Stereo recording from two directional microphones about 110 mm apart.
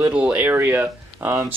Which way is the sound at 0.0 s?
10° right (ahead or behind).